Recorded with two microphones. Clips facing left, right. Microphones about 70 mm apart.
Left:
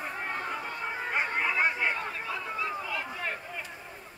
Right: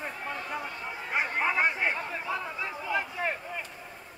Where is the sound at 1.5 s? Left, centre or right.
Centre.